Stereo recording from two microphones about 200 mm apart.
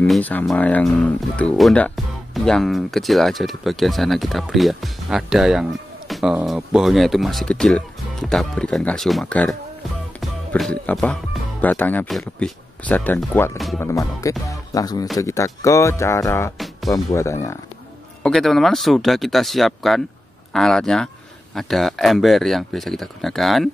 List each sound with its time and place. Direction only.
0.0 s speech: 10° left (ahead or behind)
10.2 s music: 5° left (ahead or behind)
11.6 s speech: 10° left (ahead or behind)
16.5 s speech: centre (ahead or behind)
16.9 s speech: 15° left (ahead or behind)
18.2 s speech: centre (ahead or behind)